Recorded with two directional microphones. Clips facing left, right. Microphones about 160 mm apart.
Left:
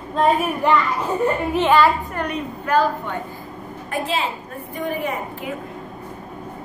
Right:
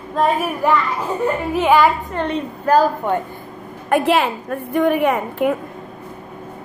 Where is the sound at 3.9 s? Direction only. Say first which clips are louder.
Right 8 dB; 65° right (ahead or behind).